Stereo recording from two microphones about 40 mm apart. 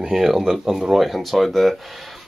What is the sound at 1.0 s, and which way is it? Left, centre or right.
Speech, centre.